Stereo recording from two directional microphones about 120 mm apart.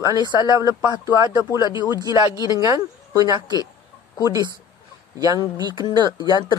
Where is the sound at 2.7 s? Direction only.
30° right (ahead or behind).